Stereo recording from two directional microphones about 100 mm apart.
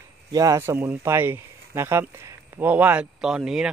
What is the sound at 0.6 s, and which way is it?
Speech, 20° right (ahead or behind).